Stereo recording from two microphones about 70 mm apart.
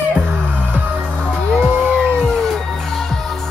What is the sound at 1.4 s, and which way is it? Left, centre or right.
Music, centre.